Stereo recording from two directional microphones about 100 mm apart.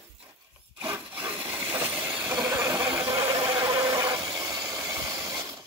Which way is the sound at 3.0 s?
40° right (ahead or behind).